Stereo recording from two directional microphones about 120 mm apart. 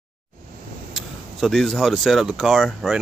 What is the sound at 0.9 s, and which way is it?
Speech, centre (ahead or behind).